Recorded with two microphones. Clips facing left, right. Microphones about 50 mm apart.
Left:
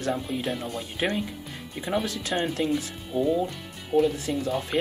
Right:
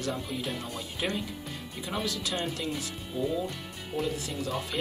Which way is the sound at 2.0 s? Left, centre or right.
Left.